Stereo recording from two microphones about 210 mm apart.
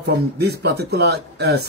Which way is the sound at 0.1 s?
50° right (ahead or behind).